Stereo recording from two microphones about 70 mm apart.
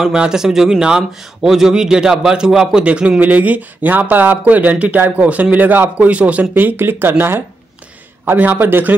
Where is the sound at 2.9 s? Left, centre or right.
Centre.